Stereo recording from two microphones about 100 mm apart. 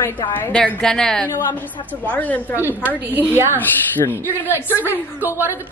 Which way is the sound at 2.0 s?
15° left (ahead or behind).